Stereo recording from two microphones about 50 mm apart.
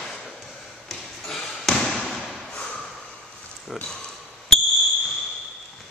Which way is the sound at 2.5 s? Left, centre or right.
Left.